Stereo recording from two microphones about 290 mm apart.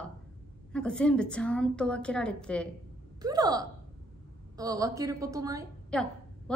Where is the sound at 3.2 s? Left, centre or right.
Centre.